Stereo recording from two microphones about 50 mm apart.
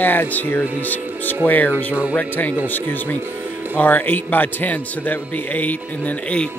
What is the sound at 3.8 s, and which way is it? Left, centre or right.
Speech, left.